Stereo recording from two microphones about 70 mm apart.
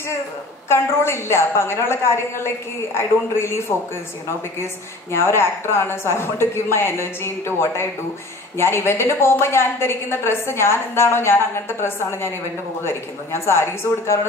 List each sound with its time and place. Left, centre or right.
0.7 s a woman's voice: left
5.2 s a woman's voice: left